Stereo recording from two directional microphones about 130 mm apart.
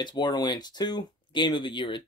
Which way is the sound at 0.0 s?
35° left (ahead or behind).